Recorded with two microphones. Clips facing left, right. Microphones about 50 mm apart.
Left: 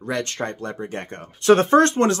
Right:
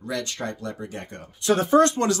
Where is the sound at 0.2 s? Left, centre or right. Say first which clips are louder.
Left 3 dB; left.